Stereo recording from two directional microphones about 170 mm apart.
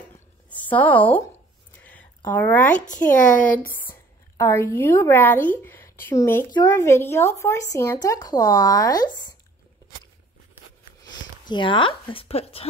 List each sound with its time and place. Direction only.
0.7 s speech: 10° left (ahead or behind)
1.8 s a sound: 10° left (ahead or behind)
2.9 s speech: 50° left (ahead or behind)
3.8 s a woman's voice: 15° left (ahead or behind)
11.1 s speech: 25° left (ahead or behind)